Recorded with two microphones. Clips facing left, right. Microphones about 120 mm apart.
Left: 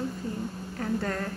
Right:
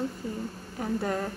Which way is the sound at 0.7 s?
15° right (ahead or behind).